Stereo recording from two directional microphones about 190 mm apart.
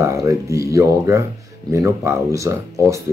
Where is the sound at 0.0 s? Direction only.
15° right (ahead or behind).